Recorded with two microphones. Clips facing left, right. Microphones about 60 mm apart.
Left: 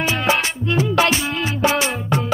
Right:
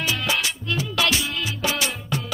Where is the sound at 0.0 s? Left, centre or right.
Left.